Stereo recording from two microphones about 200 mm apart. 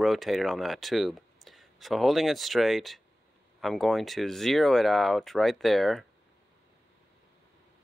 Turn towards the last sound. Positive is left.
turn(degrees=0)  # may be behind; listen again after turning